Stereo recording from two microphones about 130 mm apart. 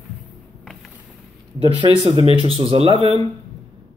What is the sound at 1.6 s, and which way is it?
Speech, 40° right (ahead or behind).